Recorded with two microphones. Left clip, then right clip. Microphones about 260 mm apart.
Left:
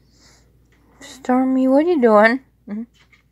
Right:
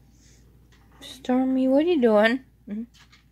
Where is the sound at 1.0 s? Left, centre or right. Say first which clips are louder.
Left 6 dB; centre.